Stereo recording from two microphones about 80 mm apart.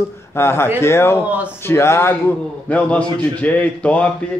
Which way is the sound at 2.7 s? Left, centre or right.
Centre.